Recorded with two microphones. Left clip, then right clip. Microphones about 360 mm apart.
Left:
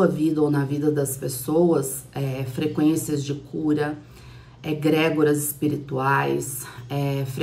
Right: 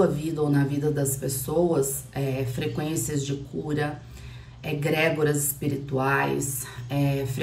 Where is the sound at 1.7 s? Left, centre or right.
Centre.